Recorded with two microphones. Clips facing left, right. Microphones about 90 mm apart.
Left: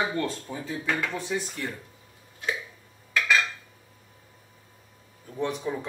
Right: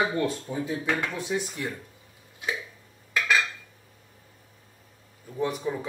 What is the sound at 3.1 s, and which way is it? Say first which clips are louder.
Dishes: even; 5° right (ahead or behind).